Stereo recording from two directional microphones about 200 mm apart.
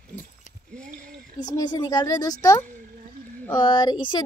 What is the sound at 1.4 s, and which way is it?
Speech, 20° left (ahead or behind).